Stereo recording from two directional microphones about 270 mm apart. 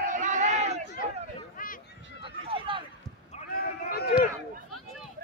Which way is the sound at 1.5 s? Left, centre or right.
Left.